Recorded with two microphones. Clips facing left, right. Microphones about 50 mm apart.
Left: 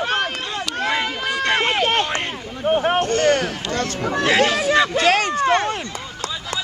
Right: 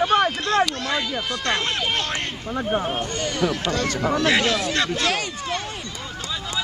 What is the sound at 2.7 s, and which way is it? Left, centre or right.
Speech, left.